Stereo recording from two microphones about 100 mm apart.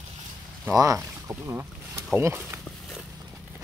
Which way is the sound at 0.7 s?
35° right (ahead or behind).